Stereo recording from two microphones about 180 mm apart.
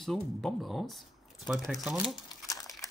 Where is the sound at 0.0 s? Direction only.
Centre (ahead or behind).